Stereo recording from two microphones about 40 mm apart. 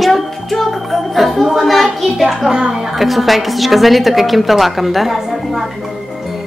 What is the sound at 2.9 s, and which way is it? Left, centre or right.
A woman's voice, centre.